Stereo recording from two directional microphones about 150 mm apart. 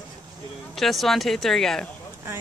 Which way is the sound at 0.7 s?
Centre (ahead or behind).